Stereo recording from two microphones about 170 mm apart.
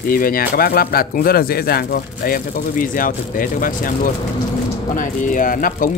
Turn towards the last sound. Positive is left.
turn(degrees=55)  # may be behind; listen again after turning